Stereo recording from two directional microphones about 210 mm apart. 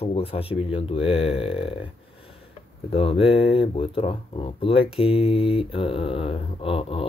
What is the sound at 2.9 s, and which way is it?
Speech, 25° left (ahead or behind).